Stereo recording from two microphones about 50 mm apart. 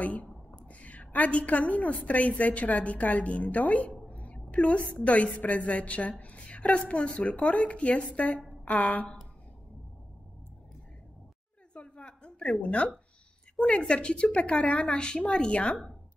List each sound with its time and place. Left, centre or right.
0.0 s a woman's voice: left
11.7 s a sound: left
12.6 s a woman's voice: left